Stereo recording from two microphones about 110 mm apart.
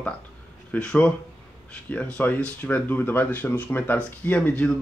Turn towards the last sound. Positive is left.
turn(degrees=10)  # may be behind; listen again after turning